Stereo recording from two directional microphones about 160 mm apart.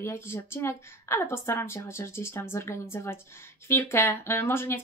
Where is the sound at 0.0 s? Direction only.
15° left (ahead or behind).